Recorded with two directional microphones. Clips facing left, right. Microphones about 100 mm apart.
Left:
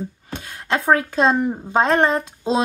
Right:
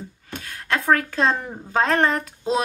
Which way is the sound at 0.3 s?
20° left (ahead or behind).